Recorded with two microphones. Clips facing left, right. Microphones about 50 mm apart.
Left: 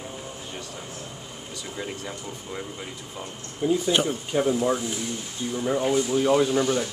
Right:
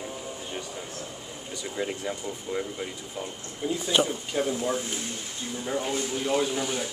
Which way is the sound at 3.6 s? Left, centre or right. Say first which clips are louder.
Left 3 dB; centre.